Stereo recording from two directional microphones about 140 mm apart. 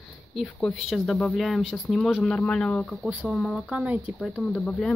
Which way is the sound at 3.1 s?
10° right (ahead or behind).